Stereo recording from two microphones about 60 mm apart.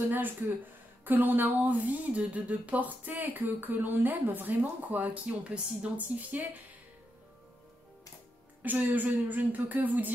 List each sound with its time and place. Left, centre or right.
0.1 s speech: right
8.6 s speech: right